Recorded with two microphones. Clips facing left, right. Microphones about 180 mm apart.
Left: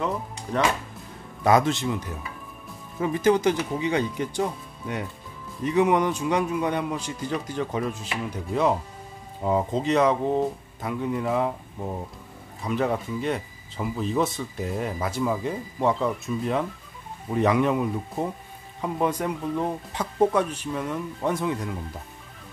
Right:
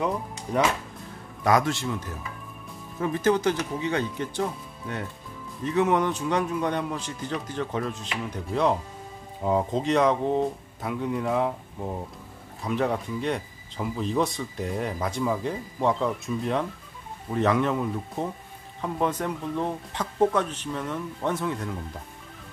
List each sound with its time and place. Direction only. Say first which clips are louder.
0.0 s speech: right 1 dB; 10° right (ahead or behind)
1.4 s a man's voice: left 2 dB; 25° left (ahead or behind)
3.0 s speech: left 2 dB; 15° left (ahead or behind)
17.3 s speech: left 2 dB; 10° left (ahead or behind)